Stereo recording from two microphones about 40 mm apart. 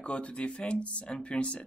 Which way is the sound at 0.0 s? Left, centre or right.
Left.